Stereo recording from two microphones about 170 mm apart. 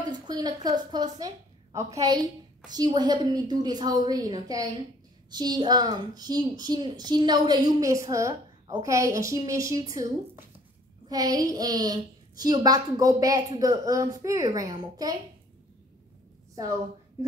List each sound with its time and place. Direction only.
0.1 s a woman's voice: 25° right (ahead or behind)